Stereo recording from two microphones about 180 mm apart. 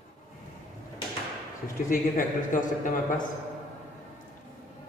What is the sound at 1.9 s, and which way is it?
A man's voice, 50° left (ahead or behind).